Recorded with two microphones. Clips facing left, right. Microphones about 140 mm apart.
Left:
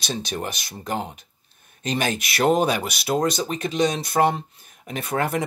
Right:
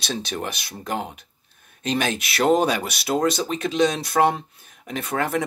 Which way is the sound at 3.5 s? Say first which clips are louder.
Right 2 dB; 45° left (ahead or behind).